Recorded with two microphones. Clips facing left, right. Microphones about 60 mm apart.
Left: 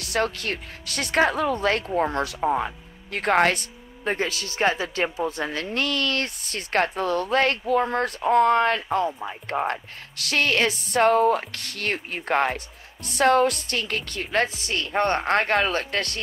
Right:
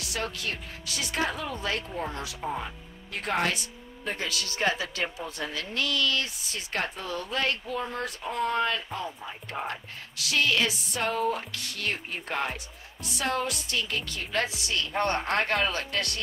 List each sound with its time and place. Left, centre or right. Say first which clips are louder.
0.0 s speech: left 7 dB; left